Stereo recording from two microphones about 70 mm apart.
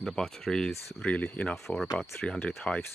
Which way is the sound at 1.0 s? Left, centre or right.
Left.